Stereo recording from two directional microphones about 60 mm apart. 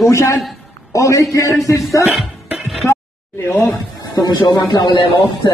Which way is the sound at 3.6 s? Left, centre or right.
Left.